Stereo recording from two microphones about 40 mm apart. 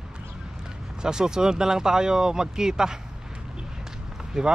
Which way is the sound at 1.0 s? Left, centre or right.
Centre.